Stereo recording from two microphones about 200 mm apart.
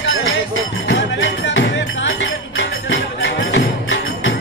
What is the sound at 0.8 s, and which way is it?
Music, 65° left (ahead or behind).